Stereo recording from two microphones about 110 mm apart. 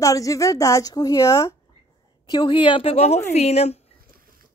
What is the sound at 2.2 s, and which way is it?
A woman's voice, 40° left (ahead or behind).